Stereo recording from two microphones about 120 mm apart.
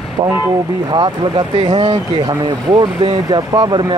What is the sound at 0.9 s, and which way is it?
Speech, 40° right (ahead or behind).